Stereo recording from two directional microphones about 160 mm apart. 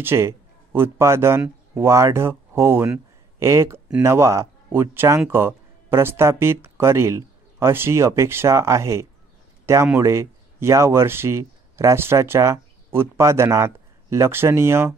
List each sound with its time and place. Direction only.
0.0 s speech: 15° right (ahead or behind)